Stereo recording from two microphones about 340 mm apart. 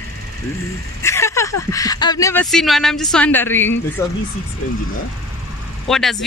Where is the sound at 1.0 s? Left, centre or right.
Centre.